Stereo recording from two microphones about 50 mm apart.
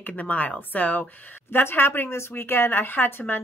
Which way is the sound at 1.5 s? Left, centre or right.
Left.